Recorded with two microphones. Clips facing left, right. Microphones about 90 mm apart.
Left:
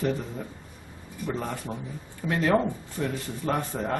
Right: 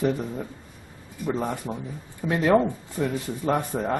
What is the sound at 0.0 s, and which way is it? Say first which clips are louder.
Speech: right 3 dB; 15° right (ahead or behind).